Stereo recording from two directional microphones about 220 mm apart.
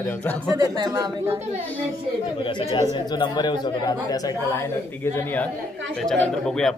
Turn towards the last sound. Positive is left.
turn(degrees=5)  # may be behind; listen again after turning